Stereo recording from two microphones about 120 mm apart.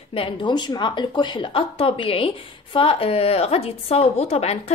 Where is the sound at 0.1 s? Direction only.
45° left (ahead or behind).